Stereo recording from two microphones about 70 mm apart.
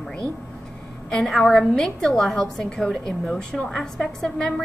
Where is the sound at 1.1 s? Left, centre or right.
Centre.